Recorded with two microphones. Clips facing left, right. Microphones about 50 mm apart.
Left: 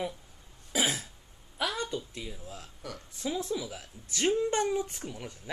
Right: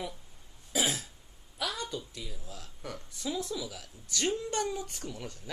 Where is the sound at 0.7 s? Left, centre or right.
Left.